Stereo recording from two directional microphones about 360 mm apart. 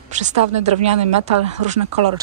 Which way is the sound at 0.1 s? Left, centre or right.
Centre.